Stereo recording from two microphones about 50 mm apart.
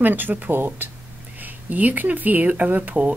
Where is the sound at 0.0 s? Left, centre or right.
Right.